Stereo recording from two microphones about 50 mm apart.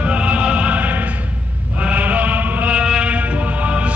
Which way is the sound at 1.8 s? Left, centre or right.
Right.